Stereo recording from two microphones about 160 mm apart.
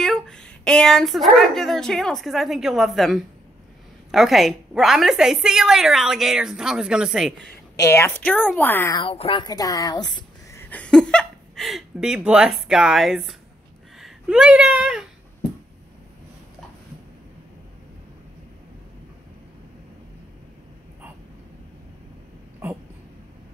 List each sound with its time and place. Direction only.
0.0 s a woman's voice: 5° left (ahead or behind)
7.7 s a woman's voice: 20° left (ahead or behind)
8.9 s speech: 35° left (ahead or behind)
10.6 s speech: 10° left (ahead or behind); by 15.0 s 5° right (ahead or behind)